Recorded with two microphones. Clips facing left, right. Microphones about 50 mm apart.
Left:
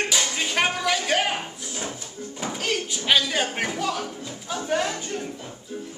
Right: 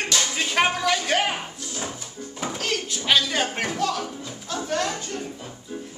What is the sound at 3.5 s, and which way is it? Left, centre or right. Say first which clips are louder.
Music: right 1 dB; centre.